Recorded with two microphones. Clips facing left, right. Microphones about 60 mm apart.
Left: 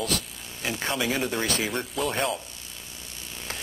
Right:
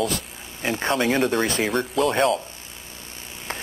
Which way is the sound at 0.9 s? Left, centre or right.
Right.